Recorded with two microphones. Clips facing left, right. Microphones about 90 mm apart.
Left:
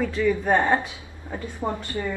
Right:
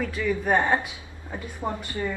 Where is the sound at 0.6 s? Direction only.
15° right (ahead or behind).